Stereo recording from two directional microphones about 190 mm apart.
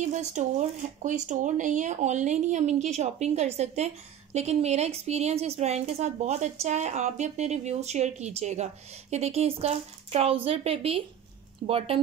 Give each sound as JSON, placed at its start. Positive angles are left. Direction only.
{"t": 0.1, "sound": "speech", "side_deg": -40}